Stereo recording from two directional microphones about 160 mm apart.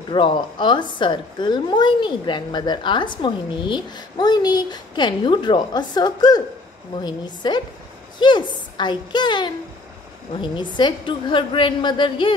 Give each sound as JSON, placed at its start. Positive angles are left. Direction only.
{"t": 0.1, "sound": "a woman's voice", "side_deg": 30}